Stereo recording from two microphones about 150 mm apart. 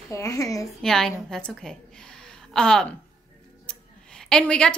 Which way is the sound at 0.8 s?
Centre (ahead or behind).